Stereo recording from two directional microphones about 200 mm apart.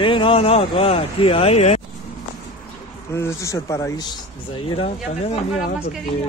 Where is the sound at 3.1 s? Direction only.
15° left (ahead or behind).